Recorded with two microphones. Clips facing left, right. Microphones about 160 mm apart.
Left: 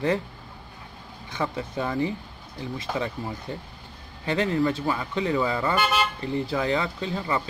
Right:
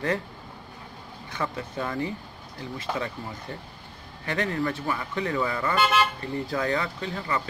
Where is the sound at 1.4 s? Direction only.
15° left (ahead or behind).